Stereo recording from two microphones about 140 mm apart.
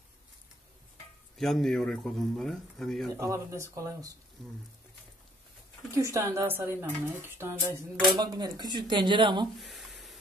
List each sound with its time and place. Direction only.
1.4 s speech: 5° left (ahead or behind)
3.1 s speech: 20° right (ahead or behind)
5.9 s speech: 20° right (ahead or behind)
8.2 s speech: 30° right (ahead or behind)
9.6 s a sound: centre (ahead or behind)